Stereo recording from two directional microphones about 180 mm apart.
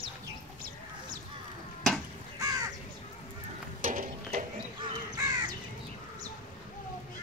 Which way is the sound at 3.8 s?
45° right (ahead or behind).